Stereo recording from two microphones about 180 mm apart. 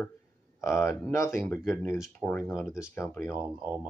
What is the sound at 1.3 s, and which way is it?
Speech, centre (ahead or behind).